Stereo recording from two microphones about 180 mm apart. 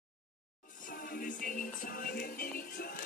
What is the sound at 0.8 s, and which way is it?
Music, 55° left (ahead or behind).